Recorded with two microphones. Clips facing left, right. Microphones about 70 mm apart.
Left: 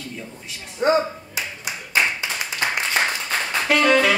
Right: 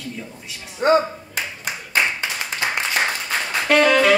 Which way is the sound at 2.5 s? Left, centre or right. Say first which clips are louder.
Even; right.